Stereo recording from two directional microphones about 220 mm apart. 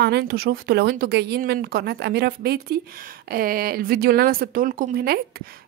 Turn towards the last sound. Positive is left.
turn(degrees=-45)  # may be behind; listen again after turning